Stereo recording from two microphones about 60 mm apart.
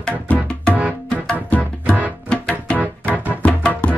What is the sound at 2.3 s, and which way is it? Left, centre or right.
Music, centre.